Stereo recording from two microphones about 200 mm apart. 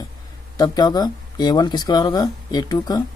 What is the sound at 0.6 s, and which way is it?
Speech, 20° left (ahead or behind).